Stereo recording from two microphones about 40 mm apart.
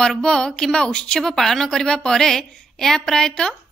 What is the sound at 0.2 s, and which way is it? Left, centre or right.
A woman's voice, centre.